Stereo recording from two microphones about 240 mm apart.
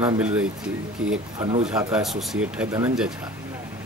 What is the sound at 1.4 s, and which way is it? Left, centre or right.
Speech, right.